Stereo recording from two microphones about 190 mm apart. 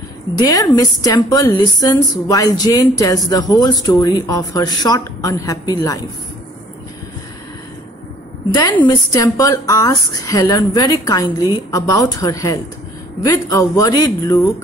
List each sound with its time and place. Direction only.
0.4 s a woman's voice: 20° left (ahead or behind)
8.8 s a woman's voice: 20° left (ahead or behind)